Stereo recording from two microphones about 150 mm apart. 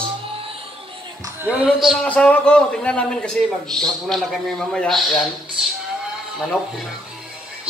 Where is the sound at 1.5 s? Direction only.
5° right (ahead or behind).